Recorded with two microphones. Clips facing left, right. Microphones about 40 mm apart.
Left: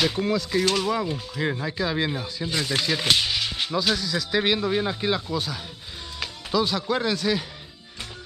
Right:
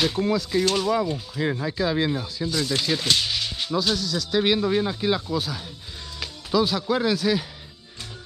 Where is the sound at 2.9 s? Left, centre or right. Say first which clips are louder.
Left 1 dB; centre.